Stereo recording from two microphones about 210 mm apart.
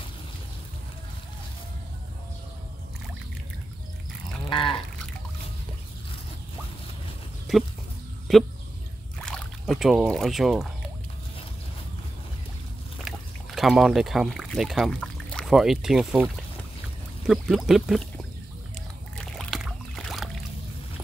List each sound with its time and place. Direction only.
4.5 s sheep: 25° left (ahead or behind)
7.5 s speech: centre (ahead or behind)
13.0 s speech: centre (ahead or behind)
17.3 s speech: centre (ahead or behind)
19.1 s boat: centre (ahead or behind)